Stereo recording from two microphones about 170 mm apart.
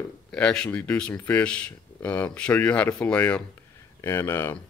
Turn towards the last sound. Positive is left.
turn(degrees=15)  # may be behind; listen again after turning